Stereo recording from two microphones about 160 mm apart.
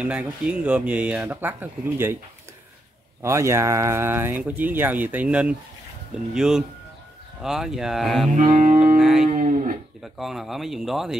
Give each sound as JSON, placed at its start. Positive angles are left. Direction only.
{"t": 0.0, "sound": "speech", "side_deg": -10}
{"t": 3.2, "sound": "speech", "side_deg": -15}
{"t": 8.3, "sound": "music", "side_deg": -50}
{"t": 8.9, "sound": "music", "side_deg": 0}
{"t": 9.3, "sound": "livestock", "side_deg": -50}
{"t": 10.0, "sound": "speech", "side_deg": 0}